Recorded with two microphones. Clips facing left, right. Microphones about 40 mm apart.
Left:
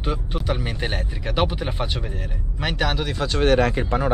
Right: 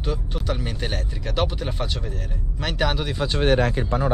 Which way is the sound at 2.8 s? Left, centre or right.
Centre.